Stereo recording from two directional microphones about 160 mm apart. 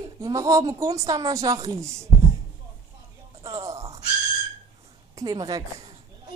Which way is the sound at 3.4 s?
20° right (ahead or behind).